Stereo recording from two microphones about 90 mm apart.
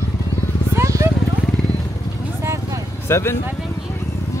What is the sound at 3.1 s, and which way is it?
Speech, 30° left (ahead or behind).